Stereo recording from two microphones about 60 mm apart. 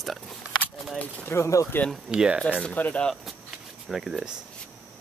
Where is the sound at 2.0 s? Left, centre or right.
Centre.